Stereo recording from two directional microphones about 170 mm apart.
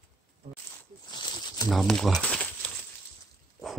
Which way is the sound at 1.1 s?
25° left (ahead or behind).